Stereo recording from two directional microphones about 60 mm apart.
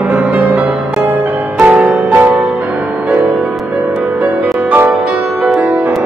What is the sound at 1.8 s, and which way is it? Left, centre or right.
Music, centre.